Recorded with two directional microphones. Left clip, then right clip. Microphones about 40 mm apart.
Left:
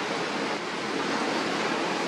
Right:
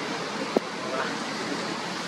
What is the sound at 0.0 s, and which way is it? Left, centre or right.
Waves, centre.